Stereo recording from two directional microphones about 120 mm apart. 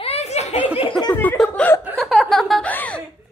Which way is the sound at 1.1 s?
15° left (ahead or behind).